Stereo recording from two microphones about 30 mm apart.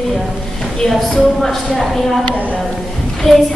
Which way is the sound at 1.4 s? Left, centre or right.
Centre.